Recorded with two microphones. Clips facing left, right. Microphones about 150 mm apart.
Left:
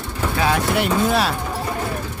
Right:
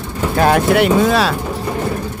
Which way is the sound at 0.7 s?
85° right.